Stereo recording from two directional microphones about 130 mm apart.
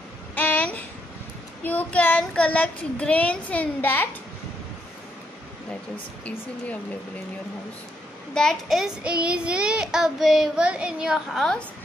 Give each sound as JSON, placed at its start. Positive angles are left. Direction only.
{"t": 0.3, "sound": "a sound", "side_deg": 10}
{"t": 1.6, "sound": "speech", "side_deg": 15}
{"t": 8.4, "sound": "child singing", "side_deg": 0}